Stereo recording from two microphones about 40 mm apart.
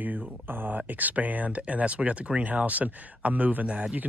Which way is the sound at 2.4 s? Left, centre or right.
Right.